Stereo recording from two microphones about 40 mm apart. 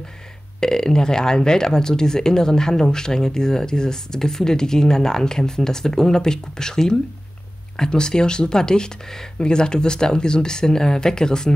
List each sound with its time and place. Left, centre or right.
0.6 s speech: centre